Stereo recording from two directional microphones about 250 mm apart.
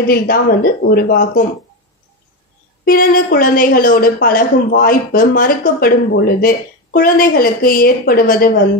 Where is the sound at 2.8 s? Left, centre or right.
Left.